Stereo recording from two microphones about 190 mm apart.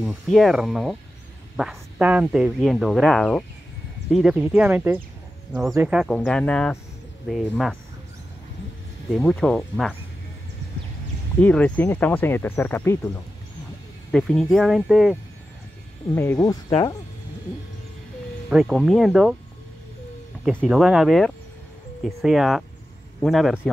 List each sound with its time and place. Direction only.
0.0 s speech: centre (ahead or behind)
5.5 s speech: centre (ahead or behind)
9.1 s speech: 5° left (ahead or behind)
11.4 s speech: 5° left (ahead or behind)
14.1 s speech: 5° left (ahead or behind)
16.2 s speech: 15° left (ahead or behind)
18.5 s speech: 5° right (ahead or behind)
20.4 s speech: 5° right (ahead or behind)